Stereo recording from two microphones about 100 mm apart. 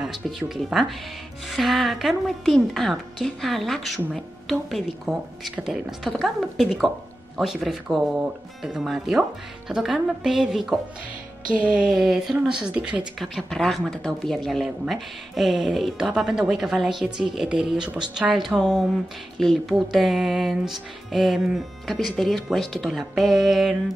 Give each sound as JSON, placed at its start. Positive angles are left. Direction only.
{"t": 0.0, "sound": "a woman's voice", "side_deg": -5}
{"t": 13.2, "sound": "a woman's voice", "side_deg": 5}